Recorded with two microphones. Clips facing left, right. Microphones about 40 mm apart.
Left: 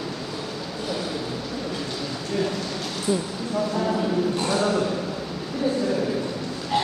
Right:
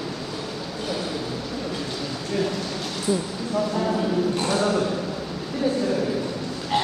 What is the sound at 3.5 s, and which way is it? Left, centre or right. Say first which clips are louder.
Speech: right 1 dB; centre.